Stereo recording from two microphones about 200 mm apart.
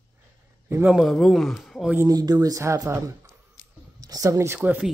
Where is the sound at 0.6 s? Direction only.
10° right (ahead or behind).